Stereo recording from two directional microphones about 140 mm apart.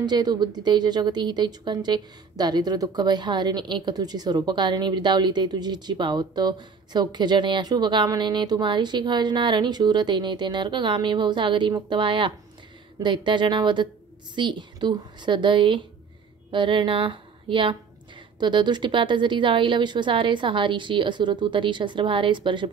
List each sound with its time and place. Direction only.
0.0 s speech: 30° right (ahead or behind)